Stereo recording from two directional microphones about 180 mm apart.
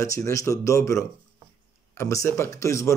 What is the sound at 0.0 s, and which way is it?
Speech, 15° left (ahead or behind).